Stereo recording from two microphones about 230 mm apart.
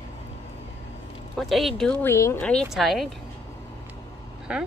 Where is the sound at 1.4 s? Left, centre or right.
Centre.